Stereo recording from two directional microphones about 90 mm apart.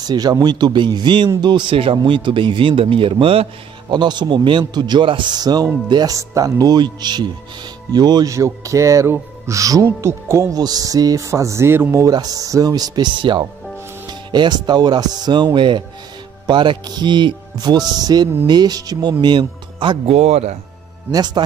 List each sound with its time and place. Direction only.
0.0 s a man's voice: 50° right (ahead or behind); by 3.4 s 80° right
3.9 s a man's voice: 55° right (ahead or behind)
8.3 s speech: 35° right (ahead or behind)
10.5 s speech: 45° right (ahead or behind); by 12.0 s 25° right (ahead or behind)
12.0 s a man's voice: 45° right (ahead or behind)
19.2 s speech: 60° right (ahead or behind)
21.1 s a man's voice: 50° right (ahead or behind)